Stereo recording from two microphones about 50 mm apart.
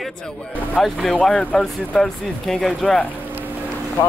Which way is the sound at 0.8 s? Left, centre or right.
Centre.